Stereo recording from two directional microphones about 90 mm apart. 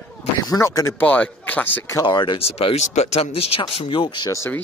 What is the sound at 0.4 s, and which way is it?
Speech, 40° left (ahead or behind).